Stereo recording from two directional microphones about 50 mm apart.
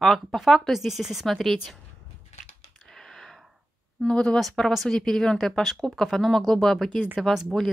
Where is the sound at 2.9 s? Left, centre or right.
Centre.